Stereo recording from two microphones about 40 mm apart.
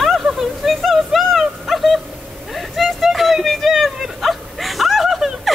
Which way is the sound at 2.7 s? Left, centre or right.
Centre.